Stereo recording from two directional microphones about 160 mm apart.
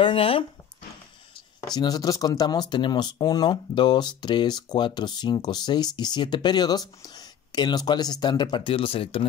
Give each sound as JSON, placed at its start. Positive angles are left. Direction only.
{"t": 0.0, "sound": "speech", "side_deg": 35}
{"t": 1.8, "sound": "speech", "side_deg": 25}